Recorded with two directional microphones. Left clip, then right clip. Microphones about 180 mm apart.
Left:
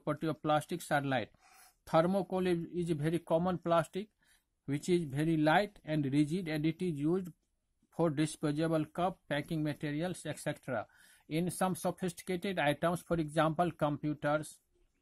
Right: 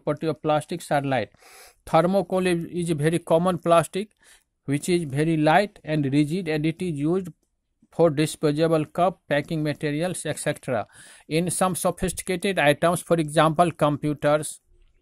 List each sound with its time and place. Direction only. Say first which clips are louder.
0.0 s speech: right 10 dB; 15° right (ahead or behind); by 14.5 s 35° right (ahead or behind)